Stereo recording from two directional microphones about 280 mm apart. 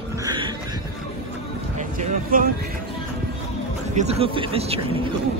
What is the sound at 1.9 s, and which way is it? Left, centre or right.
Speech, right.